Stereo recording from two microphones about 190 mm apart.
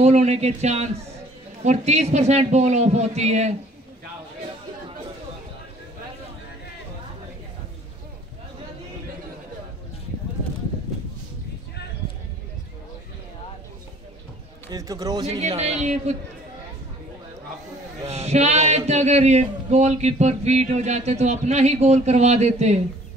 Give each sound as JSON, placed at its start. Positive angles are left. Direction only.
{"t": 0.0, "sound": "a man's voice", "side_deg": -35}
{"t": 14.7, "sound": "speech", "side_deg": -20}
{"t": 15.3, "sound": "a man's voice", "side_deg": -35}
{"t": 18.0, "sound": "a man's voice", "side_deg": -35}